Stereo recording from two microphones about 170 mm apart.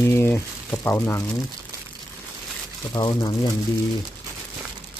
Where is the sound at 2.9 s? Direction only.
25° left (ahead or behind).